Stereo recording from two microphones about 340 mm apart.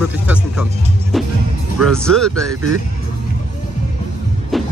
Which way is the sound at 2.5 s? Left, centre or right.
Right.